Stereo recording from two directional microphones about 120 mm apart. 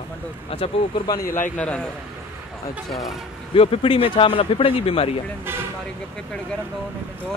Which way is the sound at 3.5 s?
50° left (ahead or behind).